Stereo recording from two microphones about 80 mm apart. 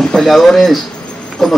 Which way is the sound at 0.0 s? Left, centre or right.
Centre.